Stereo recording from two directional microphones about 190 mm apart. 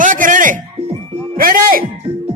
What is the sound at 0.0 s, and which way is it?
Music, 45° right (ahead or behind).